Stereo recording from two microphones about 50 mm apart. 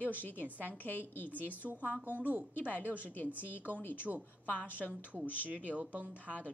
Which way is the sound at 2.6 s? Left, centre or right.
Left.